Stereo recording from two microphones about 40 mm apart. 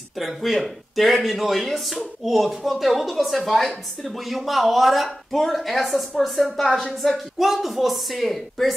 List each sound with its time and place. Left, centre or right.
0.2 s a woman's voice: centre
7.3 s a woman's voice: centre